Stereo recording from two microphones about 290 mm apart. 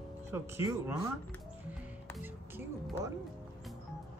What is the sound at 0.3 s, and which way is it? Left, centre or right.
Speech, centre.